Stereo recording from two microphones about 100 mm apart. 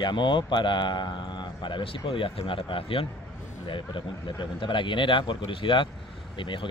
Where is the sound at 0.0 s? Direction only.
50° left (ahead or behind).